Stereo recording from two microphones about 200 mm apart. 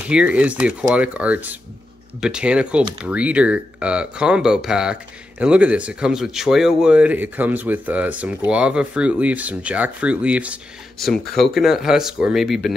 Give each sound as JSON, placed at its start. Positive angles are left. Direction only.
{"t": 0.1, "sound": "speech", "side_deg": -5}